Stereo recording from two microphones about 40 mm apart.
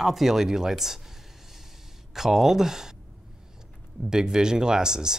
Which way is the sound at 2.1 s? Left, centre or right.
Centre.